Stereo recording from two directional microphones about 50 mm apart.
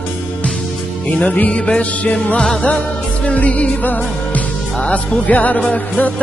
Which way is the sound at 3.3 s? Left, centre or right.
Left.